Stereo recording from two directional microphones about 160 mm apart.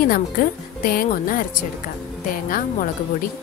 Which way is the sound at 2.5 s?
60° left (ahead or behind).